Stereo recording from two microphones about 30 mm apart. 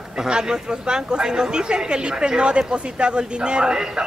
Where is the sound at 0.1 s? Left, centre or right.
Right.